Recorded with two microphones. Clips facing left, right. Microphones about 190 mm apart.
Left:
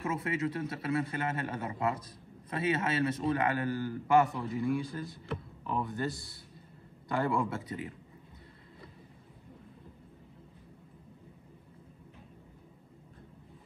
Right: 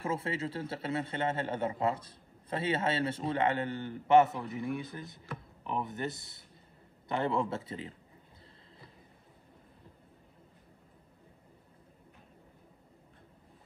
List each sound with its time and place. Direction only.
0.0 s a man's voice: 30° right (ahead or behind)